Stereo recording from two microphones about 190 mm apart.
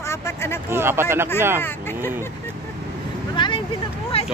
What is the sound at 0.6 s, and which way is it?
Speech, 15° right (ahead or behind).